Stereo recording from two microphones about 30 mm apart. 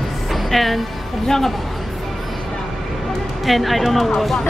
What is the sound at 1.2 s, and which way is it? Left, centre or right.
Speech, centre.